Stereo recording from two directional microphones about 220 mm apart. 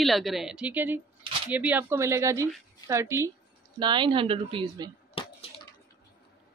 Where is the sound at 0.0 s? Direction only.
Centre (ahead or behind); by 4.9 s 20° right (ahead or behind).